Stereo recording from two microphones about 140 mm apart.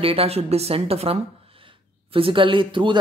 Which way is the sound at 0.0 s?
45° right (ahead or behind).